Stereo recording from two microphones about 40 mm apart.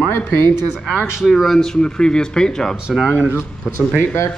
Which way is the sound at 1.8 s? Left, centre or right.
Centre.